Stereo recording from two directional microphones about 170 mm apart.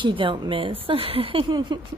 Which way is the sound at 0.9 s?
30° right (ahead or behind).